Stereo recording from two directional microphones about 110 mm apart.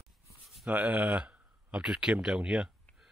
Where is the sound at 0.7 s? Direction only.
15° right (ahead or behind).